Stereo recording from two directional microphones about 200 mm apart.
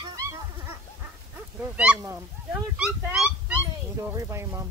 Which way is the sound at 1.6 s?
10° right (ahead or behind).